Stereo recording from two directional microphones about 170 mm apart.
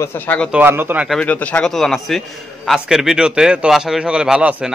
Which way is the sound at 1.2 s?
10° left (ahead or behind).